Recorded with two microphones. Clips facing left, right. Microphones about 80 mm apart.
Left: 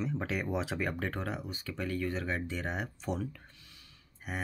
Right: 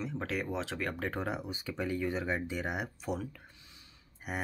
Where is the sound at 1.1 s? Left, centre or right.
Centre.